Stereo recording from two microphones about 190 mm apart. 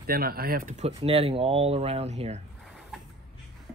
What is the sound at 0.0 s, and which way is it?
Speech, 50° right (ahead or behind).